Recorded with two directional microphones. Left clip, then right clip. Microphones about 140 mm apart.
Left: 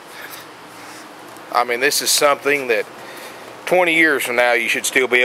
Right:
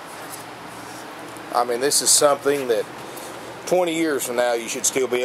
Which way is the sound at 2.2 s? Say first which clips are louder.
Left 3 dB; 25° left (ahead or behind).